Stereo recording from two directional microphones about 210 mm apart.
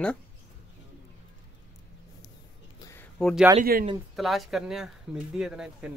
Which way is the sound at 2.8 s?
10° left (ahead or behind).